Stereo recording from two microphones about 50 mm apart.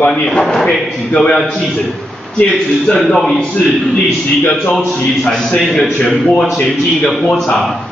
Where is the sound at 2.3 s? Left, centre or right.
Centre.